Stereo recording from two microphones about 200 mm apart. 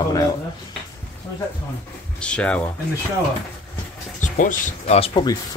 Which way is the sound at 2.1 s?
5° left (ahead or behind).